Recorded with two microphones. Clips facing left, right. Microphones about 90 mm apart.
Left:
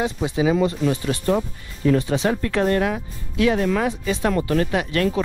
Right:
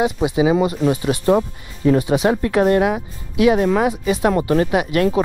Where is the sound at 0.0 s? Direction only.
15° right (ahead or behind).